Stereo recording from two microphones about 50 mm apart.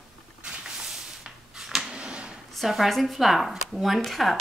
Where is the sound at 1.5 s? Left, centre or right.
Centre.